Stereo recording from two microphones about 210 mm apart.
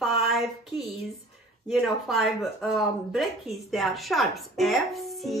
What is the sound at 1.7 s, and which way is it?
Speech, centre (ahead or behind).